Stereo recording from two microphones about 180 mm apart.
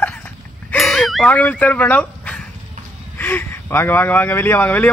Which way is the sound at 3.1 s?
10° left (ahead or behind).